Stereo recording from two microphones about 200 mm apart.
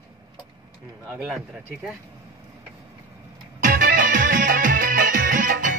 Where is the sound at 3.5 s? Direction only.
45° right (ahead or behind).